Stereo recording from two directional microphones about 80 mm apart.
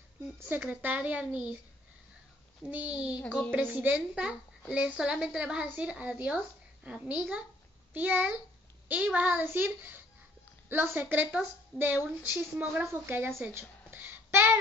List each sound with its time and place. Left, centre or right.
0.5 s a woman's voice: right
2.7 s a woman's voice: centre
3.3 s speech: centre
3.5 s a woman's voice: centre
13.5 s a sound: right